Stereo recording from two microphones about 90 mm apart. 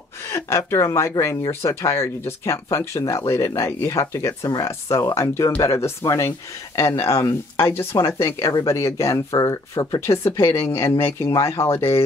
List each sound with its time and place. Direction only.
0.3 s speech: 30° left (ahead or behind)